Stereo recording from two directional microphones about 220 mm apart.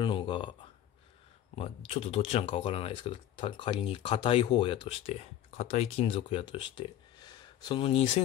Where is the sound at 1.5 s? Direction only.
25° left (ahead or behind).